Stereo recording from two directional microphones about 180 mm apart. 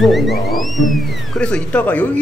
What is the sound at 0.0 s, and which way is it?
Speech, centre (ahead or behind).